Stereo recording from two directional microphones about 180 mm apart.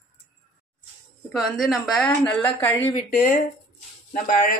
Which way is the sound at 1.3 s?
Centre (ahead or behind).